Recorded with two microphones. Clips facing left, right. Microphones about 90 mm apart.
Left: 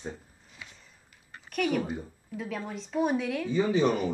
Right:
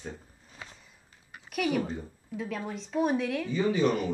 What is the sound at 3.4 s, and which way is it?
Speech, 20° left (ahead or behind).